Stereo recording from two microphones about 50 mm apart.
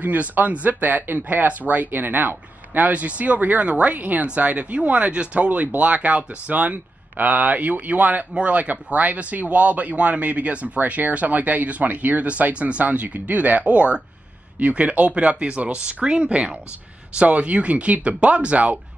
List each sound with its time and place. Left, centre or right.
0.0 s speech: right